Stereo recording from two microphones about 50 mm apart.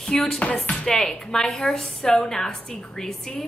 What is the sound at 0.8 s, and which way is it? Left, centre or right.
A woman's voice, centre.